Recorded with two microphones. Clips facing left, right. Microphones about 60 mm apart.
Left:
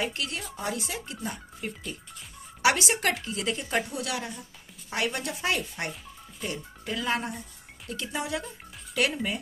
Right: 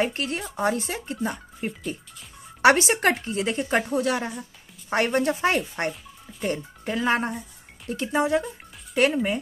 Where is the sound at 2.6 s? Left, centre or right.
Right.